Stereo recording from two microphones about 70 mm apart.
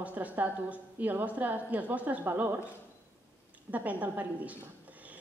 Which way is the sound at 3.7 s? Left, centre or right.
Right.